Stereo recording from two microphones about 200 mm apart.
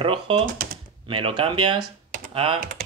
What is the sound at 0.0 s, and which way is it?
Speech, 25° right (ahead or behind).